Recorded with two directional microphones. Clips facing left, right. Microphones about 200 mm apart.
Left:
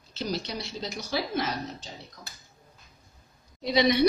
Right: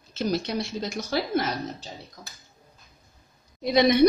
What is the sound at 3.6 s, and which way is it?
Speech, 50° right (ahead or behind).